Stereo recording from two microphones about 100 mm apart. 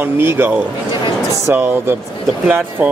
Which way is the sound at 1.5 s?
20° right (ahead or behind).